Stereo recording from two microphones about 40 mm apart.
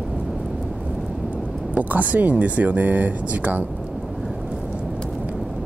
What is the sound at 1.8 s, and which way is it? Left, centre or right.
Speech, right.